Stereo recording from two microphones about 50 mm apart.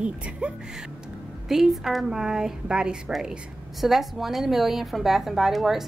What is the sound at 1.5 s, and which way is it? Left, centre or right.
A woman's voice, centre.